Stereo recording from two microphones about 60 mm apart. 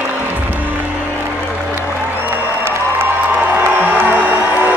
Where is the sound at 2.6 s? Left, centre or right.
Right.